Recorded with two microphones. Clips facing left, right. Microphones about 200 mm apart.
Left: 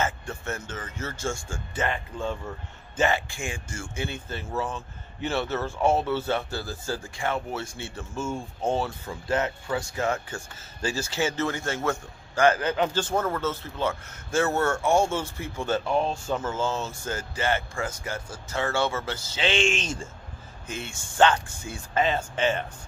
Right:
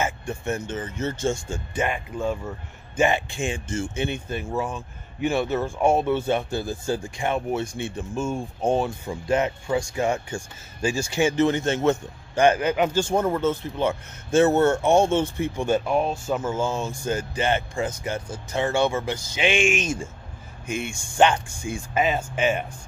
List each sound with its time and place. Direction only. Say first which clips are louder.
0.0 s speech: right 3 dB; 15° right (ahead or behind)